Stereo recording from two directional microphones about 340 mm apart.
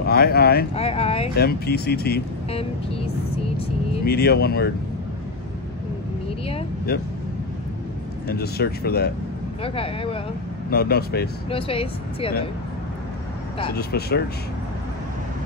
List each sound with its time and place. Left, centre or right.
0.0 s speech: left
1.3 s speech: left
3.4 s vehicle: centre
4.0 s speech: left
6.9 s speech: left
8.3 s speech: left
9.6 s speech: centre
10.7 s speech: left
11.5 s speech: centre
13.7 s speech: left